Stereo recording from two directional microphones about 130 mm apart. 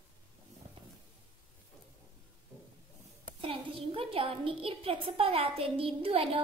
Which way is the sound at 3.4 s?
45° right (ahead or behind).